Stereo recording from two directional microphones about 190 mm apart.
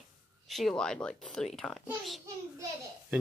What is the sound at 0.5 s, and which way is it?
A child's voice, centre (ahead or behind).